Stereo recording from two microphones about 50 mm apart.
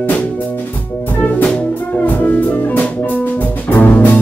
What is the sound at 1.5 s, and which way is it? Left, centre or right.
Music, left.